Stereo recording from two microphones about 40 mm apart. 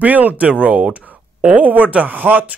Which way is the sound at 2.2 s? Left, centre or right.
Right.